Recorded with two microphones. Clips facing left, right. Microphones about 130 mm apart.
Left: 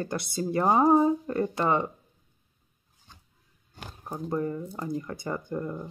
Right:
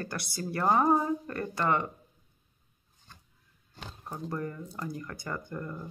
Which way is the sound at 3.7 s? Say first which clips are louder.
Left 3 dB; 10° left (ahead or behind).